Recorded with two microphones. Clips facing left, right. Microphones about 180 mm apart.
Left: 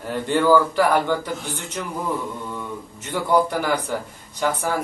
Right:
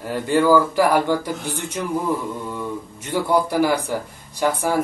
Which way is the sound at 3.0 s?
10° right (ahead or behind).